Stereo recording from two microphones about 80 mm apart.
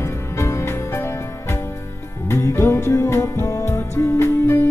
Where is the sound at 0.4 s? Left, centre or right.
Left.